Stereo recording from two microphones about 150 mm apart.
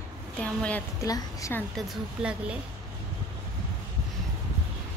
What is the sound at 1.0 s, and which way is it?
Speech, 20° left (ahead or behind).